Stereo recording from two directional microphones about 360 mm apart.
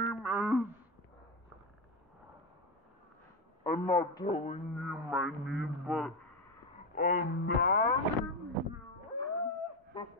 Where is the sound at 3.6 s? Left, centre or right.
Centre.